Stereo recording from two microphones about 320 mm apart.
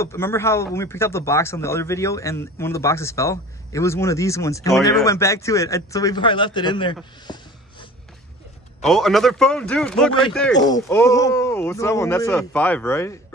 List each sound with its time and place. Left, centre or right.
0.0 s speech: centre
7.3 s snort: centre
8.8 s speech: centre